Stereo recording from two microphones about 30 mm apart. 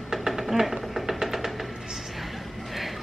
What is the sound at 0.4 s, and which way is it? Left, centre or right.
Chopping, centre.